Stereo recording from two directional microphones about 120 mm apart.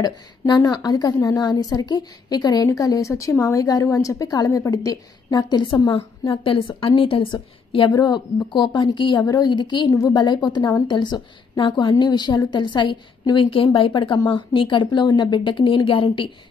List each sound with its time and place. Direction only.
0.0 s a woman's voice: 35° left (ahead or behind)